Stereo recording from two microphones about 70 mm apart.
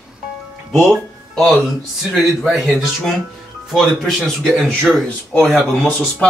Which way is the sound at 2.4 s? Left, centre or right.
Centre.